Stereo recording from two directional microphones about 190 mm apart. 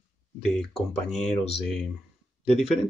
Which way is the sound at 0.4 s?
Centre (ahead or behind).